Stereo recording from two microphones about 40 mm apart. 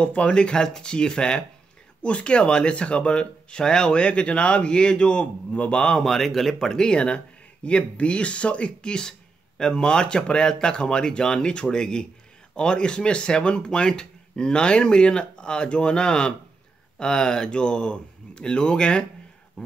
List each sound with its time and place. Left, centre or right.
0.0 s speech: left
0.3 s speech: left
6.0 s speech: centre
6.7 s speech: left